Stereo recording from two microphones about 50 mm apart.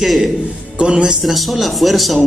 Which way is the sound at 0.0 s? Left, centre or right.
Centre.